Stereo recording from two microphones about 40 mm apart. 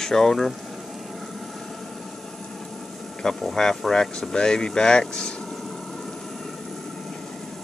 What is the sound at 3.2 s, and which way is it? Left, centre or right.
Speech, centre.